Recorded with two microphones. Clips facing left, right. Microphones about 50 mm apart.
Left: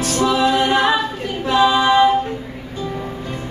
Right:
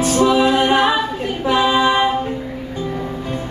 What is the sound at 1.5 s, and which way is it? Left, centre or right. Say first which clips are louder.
Female singing: left 1 dB; centre.